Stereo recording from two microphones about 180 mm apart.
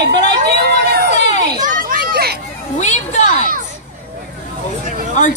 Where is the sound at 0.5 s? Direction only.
70° right (ahead or behind).